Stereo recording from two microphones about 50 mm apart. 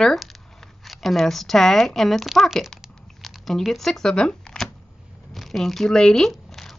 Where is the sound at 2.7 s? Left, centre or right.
Centre.